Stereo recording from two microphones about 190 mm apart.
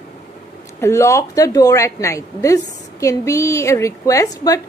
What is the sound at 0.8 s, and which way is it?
A woman's voice, 15° left (ahead or behind).